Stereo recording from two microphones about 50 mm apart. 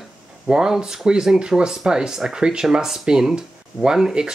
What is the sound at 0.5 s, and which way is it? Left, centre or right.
Speech, centre.